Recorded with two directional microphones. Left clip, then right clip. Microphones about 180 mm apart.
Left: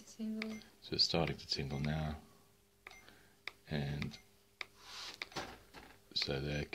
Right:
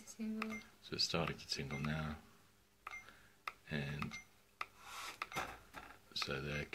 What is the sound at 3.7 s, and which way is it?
Speech, 50° left (ahead or behind).